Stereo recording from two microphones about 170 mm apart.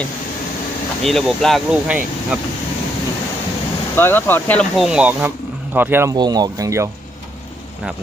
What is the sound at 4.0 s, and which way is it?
Speech, 10° left (ahead or behind).